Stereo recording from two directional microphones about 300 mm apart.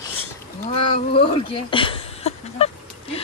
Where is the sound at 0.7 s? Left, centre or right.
Centre.